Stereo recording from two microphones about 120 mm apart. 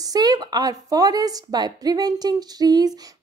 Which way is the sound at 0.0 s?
35° right (ahead or behind).